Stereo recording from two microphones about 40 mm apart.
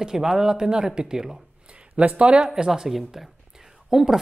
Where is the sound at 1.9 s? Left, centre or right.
Right.